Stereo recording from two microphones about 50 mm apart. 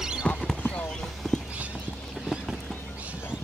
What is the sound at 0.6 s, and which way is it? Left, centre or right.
Clip-clop, left.